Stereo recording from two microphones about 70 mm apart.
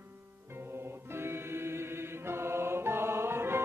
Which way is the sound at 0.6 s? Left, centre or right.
Right.